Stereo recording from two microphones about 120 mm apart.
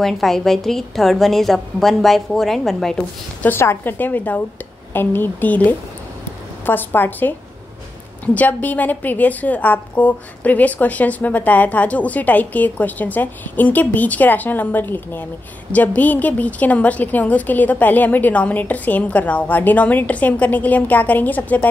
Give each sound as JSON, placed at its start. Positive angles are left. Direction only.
{"t": 0.0, "sound": "a woman's voice", "side_deg": 0}
{"t": 3.4, "sound": "a woman's voice", "side_deg": 20}
{"t": 8.4, "sound": "a woman's voice", "side_deg": 15}